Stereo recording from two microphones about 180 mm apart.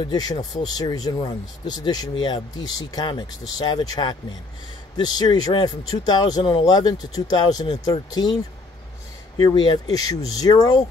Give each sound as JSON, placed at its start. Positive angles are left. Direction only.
{"t": 0.0, "sound": "speech", "side_deg": 20}
{"t": 9.4, "sound": "speech", "side_deg": 25}